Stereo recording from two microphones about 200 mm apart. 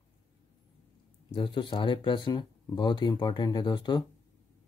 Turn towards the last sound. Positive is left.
turn(degrees=20)  # may be behind; listen again after turning